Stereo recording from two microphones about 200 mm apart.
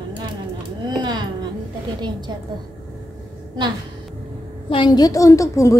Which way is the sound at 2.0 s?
20° right (ahead or behind).